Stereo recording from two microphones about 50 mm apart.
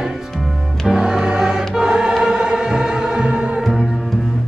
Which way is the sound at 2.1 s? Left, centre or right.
Centre.